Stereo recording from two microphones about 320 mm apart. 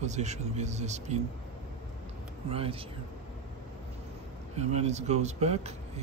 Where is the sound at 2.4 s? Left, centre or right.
Centre.